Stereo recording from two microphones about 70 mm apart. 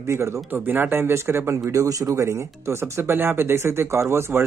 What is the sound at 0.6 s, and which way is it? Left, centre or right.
Speech, right.